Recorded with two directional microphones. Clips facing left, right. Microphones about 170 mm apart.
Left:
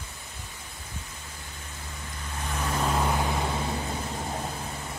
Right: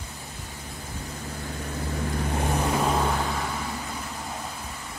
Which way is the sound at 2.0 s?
60° right (ahead or behind).